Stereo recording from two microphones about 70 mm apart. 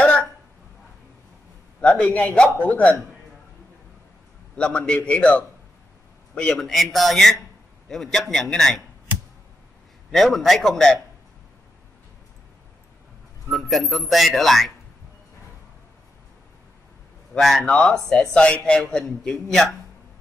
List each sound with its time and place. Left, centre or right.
0.0 s a sound: centre
1.8 s a man's voice: centre
4.6 s a man's voice: centre
10.1 s a man's voice: centre
13.5 s a man's voice: centre
17.3 s a man's voice: centre